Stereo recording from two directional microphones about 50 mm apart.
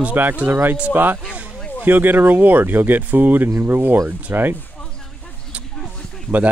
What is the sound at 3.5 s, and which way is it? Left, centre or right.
Speech, right.